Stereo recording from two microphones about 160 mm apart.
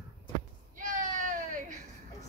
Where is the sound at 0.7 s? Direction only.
50° right (ahead or behind).